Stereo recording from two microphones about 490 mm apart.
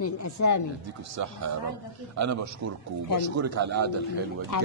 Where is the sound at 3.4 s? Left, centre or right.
Right.